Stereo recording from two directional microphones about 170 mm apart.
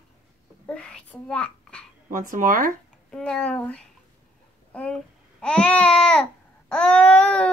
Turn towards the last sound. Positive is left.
turn(degrees=5)  # may be behind; listen again after turning